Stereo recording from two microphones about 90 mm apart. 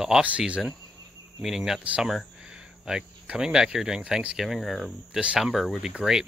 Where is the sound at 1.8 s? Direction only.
15° right (ahead or behind).